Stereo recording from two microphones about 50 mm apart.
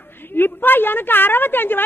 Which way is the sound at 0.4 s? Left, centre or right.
Left.